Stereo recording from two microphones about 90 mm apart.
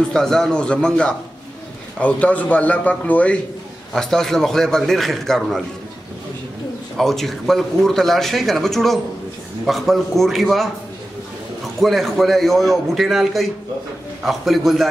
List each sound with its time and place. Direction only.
0.1 s a man's voice: 5° left (ahead or behind)
3.9 s a man's voice: 5° left (ahead or behind)
7.0 s a man's voice: centre (ahead or behind)